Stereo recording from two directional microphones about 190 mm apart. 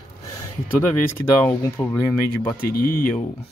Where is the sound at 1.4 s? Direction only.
15° left (ahead or behind).